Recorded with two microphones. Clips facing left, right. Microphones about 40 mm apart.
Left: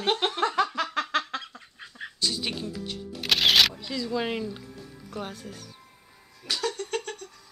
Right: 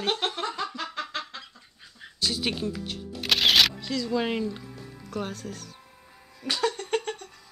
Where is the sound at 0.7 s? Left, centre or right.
Left.